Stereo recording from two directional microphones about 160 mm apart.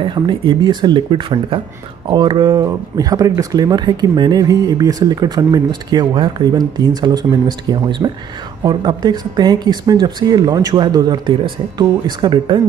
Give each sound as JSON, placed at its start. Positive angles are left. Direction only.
{"t": 0.0, "sound": "speech", "side_deg": -30}